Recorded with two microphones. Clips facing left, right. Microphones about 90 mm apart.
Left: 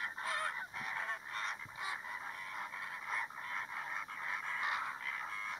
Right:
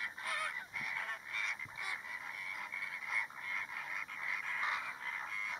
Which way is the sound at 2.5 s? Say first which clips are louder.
Left 1 dB; 40° left (ahead or behind).